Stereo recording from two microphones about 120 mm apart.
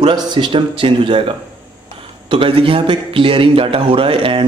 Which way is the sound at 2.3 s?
50° right (ahead or behind).